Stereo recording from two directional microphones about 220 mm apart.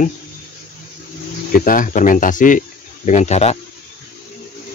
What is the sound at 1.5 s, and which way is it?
Speech, 40° left (ahead or behind).